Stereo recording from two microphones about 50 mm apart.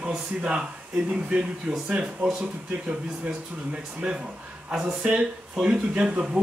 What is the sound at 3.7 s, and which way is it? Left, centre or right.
Speech, centre.